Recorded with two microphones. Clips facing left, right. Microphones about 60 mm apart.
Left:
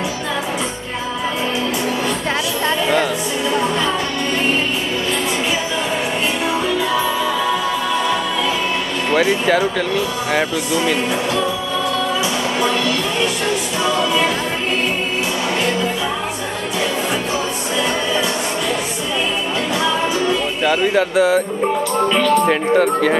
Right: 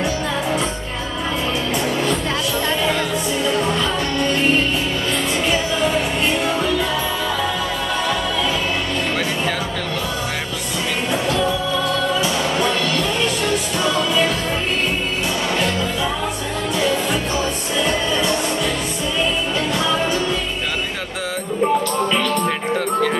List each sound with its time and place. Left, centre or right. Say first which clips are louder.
20.6 s speech: left 9 dB; left
22.5 s speech: left 6 dB; left